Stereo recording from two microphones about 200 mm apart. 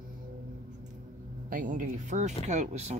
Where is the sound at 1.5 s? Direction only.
45° right (ahead or behind).